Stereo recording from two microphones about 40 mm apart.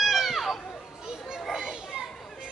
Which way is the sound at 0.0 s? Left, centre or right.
Centre.